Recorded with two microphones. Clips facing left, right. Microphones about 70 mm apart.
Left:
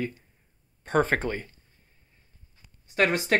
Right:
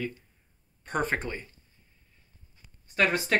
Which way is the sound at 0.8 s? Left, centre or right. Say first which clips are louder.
Left 6 dB; left.